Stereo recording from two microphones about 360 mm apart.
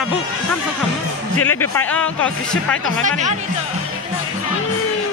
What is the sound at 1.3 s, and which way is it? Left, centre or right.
Speech, left.